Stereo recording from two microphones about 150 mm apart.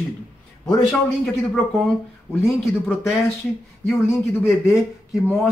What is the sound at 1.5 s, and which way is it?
Speech, 5° left (ahead or behind).